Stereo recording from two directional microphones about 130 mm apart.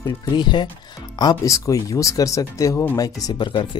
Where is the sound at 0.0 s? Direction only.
35° left (ahead or behind).